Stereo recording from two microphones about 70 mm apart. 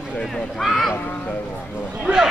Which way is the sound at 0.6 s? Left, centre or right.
Centre.